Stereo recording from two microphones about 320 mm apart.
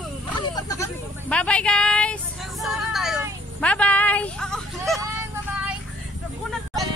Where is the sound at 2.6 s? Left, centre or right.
Centre.